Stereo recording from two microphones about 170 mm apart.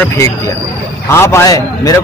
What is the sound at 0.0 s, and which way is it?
A man's voice, 15° left (ahead or behind).